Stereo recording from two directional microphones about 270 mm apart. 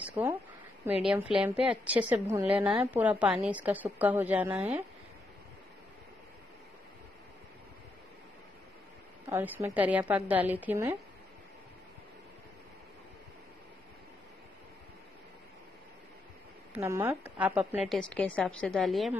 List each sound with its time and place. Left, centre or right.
0.1 s a woman's voice: centre
9.3 s a woman's voice: centre
16.7 s a woman's voice: centre